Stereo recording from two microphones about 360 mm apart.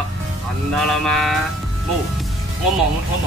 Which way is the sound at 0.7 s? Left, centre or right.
Centre.